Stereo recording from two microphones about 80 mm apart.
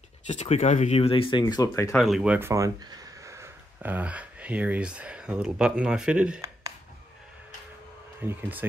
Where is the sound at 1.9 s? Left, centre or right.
Centre.